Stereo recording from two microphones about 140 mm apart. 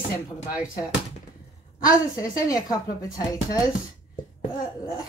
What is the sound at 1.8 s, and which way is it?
Speech, 25° left (ahead or behind).